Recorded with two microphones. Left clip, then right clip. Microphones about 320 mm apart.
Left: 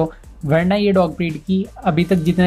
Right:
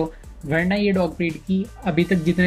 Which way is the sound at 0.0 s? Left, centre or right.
Left.